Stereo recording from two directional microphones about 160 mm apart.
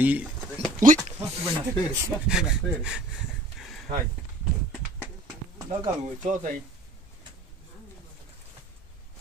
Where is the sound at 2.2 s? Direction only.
5° right (ahead or behind).